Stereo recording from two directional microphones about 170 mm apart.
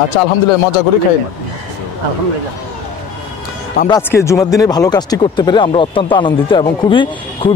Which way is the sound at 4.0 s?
15° left (ahead or behind).